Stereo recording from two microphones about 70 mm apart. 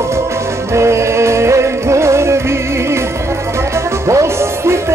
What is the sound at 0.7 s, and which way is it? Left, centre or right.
Music, right.